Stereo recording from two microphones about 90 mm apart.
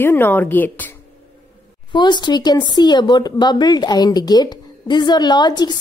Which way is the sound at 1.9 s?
55° left (ahead or behind).